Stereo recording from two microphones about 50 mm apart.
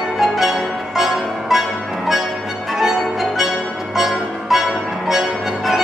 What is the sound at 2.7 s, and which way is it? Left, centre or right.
Music, centre.